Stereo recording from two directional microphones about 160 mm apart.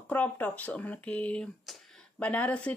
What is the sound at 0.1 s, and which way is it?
A woman's voice, 10° left (ahead or behind).